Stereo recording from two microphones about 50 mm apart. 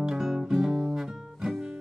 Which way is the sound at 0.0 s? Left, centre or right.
Centre.